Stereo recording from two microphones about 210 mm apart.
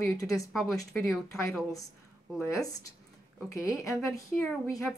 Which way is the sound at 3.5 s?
15° left (ahead or behind).